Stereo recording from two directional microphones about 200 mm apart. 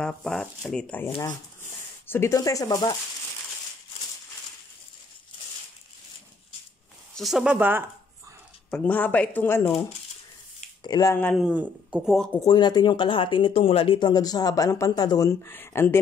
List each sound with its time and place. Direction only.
0.0 s speech: centre (ahead or behind); by 3.0 s 20° left (ahead or behind)
7.2 s speech: centre (ahead or behind)
8.6 s speech: 5° left (ahead or behind)
10.8 s speech: 20° left (ahead or behind)
11.3 s speech: 5° right (ahead or behind)
12.4 s speech: 20° left (ahead or behind)